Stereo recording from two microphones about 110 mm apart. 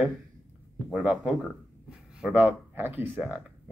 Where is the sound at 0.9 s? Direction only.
10° right (ahead or behind).